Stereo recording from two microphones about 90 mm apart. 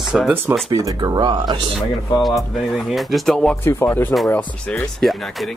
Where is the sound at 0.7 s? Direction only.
40° right (ahead or behind).